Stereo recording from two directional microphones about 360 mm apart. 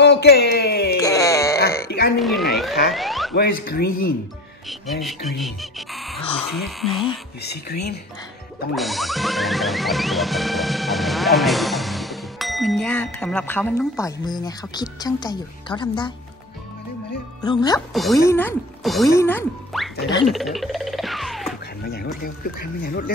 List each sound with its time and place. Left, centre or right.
0.0 s a sound: left
0.9 s wail: centre
1.9 s a sound: left
2.1 s a sound: centre
3.3 s speech: left
5.0 s speech: centre
6.5 s music: centre
7.7 s speech: left
8.7 s music: centre
17.4 s speech: centre
17.9 s music: centre
21.8 s speech: left